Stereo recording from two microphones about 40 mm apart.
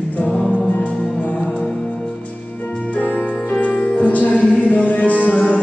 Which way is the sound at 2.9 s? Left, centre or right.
Left.